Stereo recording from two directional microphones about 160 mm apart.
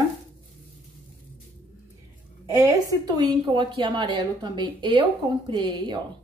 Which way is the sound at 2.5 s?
20° right (ahead or behind).